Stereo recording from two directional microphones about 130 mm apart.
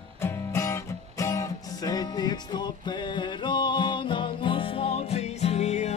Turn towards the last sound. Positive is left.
turn(degrees=60)  # may be behind; listen again after turning